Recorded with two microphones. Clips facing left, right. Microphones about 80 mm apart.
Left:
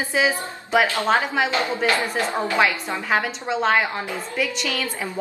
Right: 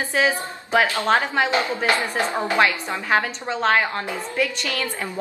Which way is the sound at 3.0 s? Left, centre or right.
Centre.